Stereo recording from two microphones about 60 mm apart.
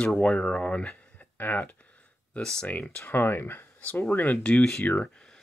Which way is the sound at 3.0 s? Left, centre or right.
Left.